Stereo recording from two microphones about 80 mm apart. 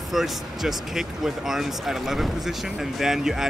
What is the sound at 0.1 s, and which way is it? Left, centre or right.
Speech, centre.